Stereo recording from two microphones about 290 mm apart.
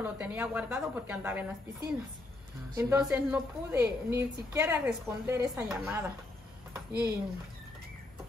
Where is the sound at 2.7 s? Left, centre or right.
Centre.